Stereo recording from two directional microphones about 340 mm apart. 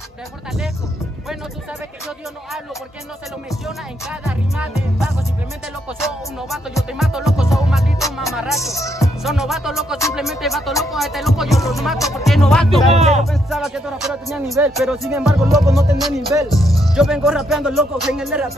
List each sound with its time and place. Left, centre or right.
6.5 s speech: centre
8.0 s music: centre
8.5 s speech: centre
12.9 s speech: centre
13.2 s speech: centre